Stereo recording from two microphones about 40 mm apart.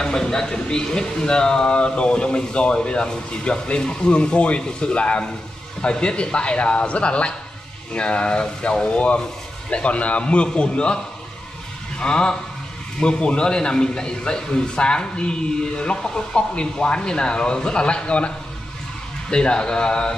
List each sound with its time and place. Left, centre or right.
0.0 s a man's voice: centre
12.0 s a man's voice: left